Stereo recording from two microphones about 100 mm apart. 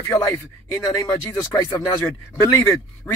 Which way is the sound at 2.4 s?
25° left (ahead or behind).